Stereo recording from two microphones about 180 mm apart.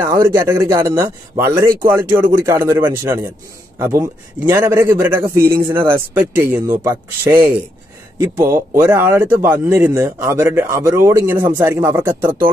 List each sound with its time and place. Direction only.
0.0 s speech: 15° right (ahead or behind)